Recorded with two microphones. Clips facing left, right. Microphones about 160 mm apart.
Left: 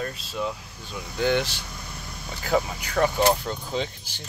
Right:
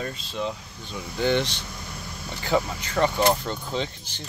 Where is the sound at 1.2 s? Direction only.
5° left (ahead or behind).